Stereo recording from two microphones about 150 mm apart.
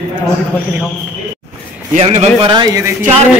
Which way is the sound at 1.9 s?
50° right (ahead or behind).